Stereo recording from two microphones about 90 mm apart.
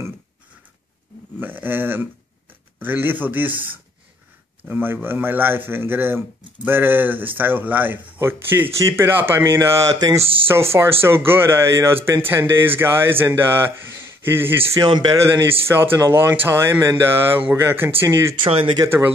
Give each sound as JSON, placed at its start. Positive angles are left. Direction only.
{"t": 1.4, "sound": "speech", "side_deg": -20}
{"t": 14.9, "sound": "speech", "side_deg": -55}
{"t": 15.7, "sound": "speech", "side_deg": -25}
{"t": 18.4, "sound": "speech", "side_deg": -80}
{"t": 18.9, "sound": "speech", "side_deg": -25}